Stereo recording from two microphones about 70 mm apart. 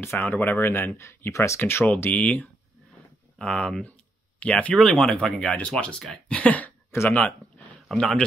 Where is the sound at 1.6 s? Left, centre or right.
Left.